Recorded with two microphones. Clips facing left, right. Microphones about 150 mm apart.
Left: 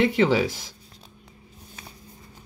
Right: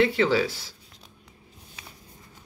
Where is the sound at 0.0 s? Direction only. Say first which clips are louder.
Left 1 dB; 15° left (ahead or behind).